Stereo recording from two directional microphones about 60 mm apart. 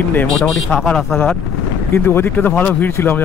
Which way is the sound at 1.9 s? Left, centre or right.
Left.